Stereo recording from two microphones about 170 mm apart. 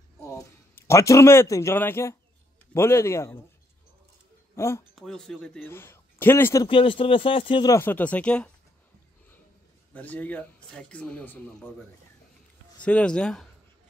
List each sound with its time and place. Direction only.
0.2 s a man's voice: 15° left (ahead or behind)
4.6 s speech: 15° left (ahead or behind)
4.9 s speech: 5° left (ahead or behind)
6.7 s speech: 30° left (ahead or behind)
7.7 s speech: 10° left (ahead or behind)
9.9 s speech: 10° left (ahead or behind)
12.8 s speech: 5° left (ahead or behind)